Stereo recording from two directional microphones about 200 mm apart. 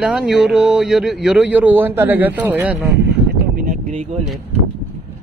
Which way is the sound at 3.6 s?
40° right (ahead or behind).